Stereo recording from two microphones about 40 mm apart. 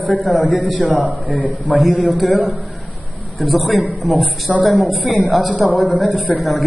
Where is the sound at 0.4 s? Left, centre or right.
Left.